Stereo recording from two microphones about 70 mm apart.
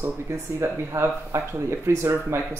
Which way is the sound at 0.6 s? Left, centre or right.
Right.